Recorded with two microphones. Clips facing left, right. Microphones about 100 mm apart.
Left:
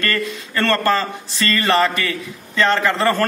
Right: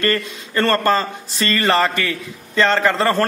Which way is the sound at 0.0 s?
30° right (ahead or behind).